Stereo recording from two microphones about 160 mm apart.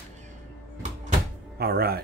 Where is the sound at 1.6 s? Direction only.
75° right (ahead or behind).